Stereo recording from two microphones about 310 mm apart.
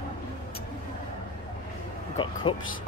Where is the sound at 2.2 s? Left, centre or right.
Centre.